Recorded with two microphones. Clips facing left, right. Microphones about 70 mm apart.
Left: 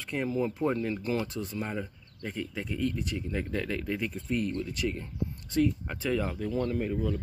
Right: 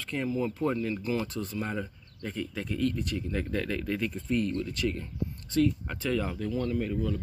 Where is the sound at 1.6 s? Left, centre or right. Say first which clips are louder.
Right 1 dB; centre.